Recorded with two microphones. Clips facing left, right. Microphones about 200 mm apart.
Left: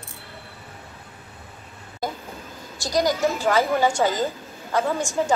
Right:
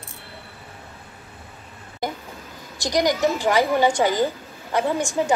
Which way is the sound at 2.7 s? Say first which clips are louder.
Right 1 dB; 15° right (ahead or behind).